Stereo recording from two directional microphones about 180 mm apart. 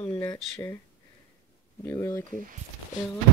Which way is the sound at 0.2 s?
15° left (ahead or behind).